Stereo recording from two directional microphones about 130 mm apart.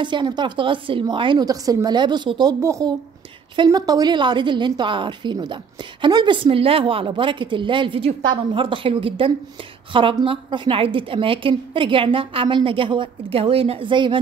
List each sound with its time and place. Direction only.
0.0 s a woman's voice: 35° right (ahead or behind)
2.6 s speech: 25° right (ahead or behind)
3.5 s a woman's voice: 35° right (ahead or behind)